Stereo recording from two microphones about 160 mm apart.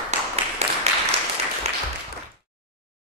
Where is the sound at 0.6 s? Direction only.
45° right (ahead or behind).